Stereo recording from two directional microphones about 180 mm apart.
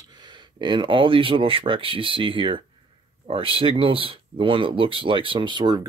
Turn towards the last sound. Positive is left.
turn(degrees=-25)  # may be behind; listen again after turning